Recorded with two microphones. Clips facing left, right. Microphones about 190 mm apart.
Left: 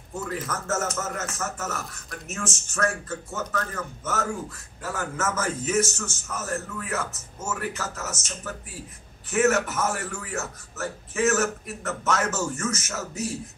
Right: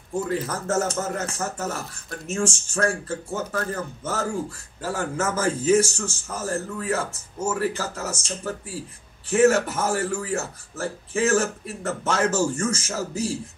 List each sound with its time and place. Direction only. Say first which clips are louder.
0.1 s a man's voice: right 5 dB; 30° right (ahead or behind)